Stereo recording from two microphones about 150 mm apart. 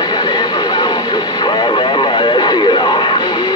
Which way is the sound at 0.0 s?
30° left (ahead or behind).